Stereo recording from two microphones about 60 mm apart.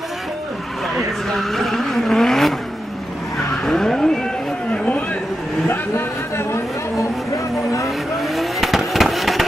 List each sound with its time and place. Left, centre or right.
0.9 s vehicle: centre
3.6 s vehicle: centre
4.7 s a sound: left
5.7 s vehicle: left
8.2 s vehicle: centre